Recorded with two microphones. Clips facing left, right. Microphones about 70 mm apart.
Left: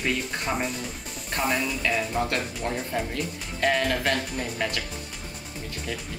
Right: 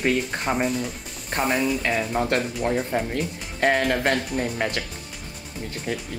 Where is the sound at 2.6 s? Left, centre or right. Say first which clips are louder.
Right 5 dB; right.